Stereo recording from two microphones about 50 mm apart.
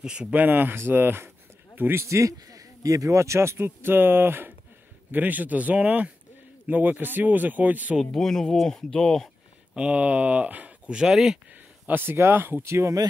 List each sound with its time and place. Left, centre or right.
0.0 s speech: centre
0.3 s speech: right
2.9 s speech: right
8.0 s speech: centre
9.8 s speech: right
11.0 s speech: centre
11.8 s speech: right
12.6 s speech: right